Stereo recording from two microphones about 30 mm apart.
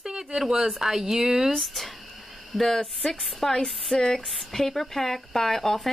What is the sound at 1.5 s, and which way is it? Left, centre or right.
Speech, centre.